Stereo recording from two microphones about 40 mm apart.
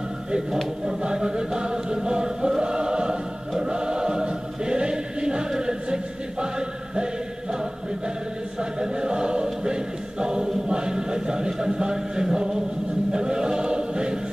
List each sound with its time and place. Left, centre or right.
0.8 s chant: centre
5.6 s music: right
8.5 s choir: centre